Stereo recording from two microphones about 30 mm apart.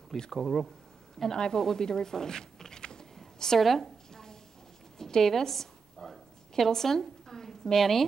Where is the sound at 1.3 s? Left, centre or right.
Left.